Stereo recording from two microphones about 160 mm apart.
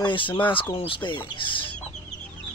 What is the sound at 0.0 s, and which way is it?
Speech, 30° left (ahead or behind).